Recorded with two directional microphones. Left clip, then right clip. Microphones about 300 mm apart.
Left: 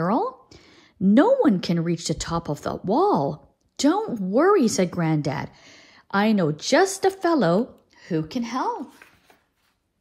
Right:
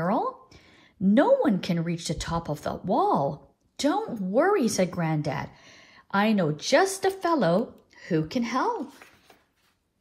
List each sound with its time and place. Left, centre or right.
0.0 s speech: left